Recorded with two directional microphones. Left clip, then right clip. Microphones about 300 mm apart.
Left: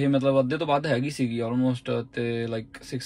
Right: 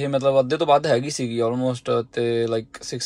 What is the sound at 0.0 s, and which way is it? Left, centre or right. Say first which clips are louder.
Speech: right 4 dB; centre.